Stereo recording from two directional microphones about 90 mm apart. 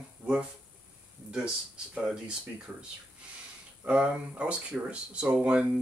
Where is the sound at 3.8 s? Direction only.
15° right (ahead or behind).